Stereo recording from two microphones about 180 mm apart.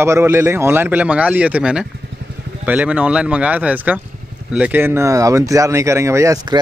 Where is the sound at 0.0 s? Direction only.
15° right (ahead or behind).